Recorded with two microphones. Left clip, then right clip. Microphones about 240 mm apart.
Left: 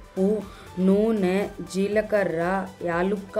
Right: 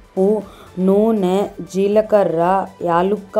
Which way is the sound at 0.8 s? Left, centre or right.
Centre.